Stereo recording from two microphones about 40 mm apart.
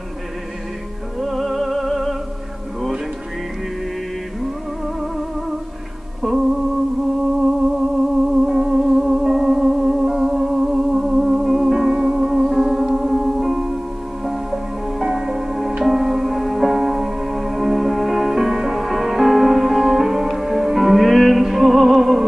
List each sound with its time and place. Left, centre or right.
1.2 s music: centre
4.4 s music: centre
6.2 s music: centre
7.4 s music: centre
11.9 s music: right
12.3 s music: centre